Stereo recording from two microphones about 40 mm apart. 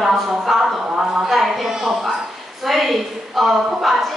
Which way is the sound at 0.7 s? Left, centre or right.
Centre.